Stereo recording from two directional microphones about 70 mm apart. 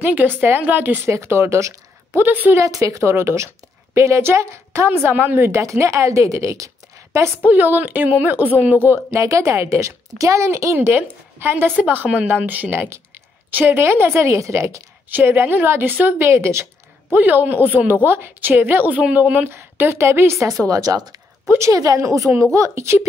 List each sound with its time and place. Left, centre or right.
0.0 s a woman's voice: right
1.1 s speech: right
2.2 s a woman's voice: right
2.6 s a woman's voice: right
4.9 s a woman's voice: right
5.5 s a woman's voice: right
7.4 s a woman's voice: right
9.2 s a woman's voice: right
11.7 s a woman's voice: right
15.0 s a woman's voice: right
17.1 s a woman's voice: right
20.6 s speech: right
21.5 s a woman's voice: right
21.7 s a woman's voice: right